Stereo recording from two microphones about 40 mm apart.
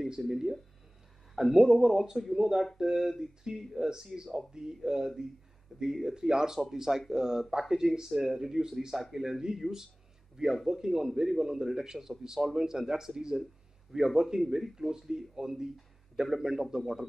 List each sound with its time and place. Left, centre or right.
0.3 s speech: centre